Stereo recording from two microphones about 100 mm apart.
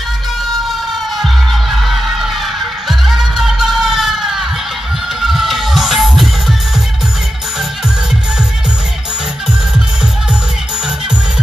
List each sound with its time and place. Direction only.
1.1 s music: centre (ahead or behind)